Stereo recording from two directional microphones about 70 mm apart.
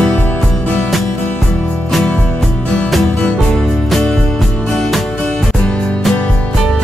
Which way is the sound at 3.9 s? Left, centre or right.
Centre.